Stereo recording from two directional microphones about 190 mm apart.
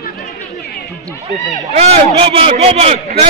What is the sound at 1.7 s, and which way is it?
A man's voice, 35° right (ahead or behind).